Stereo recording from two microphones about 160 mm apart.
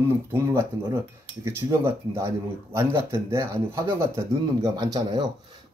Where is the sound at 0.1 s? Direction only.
15° right (ahead or behind).